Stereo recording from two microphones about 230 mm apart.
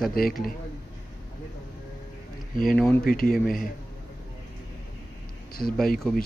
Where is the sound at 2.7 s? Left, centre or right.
Centre.